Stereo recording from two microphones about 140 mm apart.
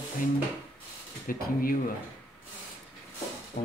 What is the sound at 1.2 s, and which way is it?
Speech, 90° left.